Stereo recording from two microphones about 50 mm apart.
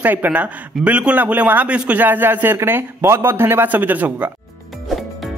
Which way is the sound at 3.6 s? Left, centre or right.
Right.